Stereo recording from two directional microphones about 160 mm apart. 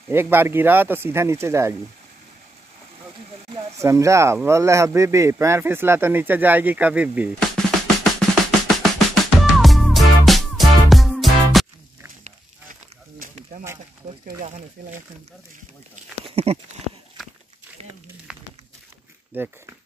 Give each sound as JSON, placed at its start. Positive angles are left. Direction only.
{"t": 0.1, "sound": "speech", "side_deg": -15}
{"t": 3.8, "sound": "speech", "side_deg": -20}
{"t": 8.0, "sound": "drum", "side_deg": 0}
{"t": 13.2, "sound": "snake", "side_deg": -50}
{"t": 14.4, "sound": "speech", "side_deg": -50}
{"t": 16.3, "sound": "a sound", "side_deg": -40}
{"t": 19.3, "sound": "speech", "side_deg": -10}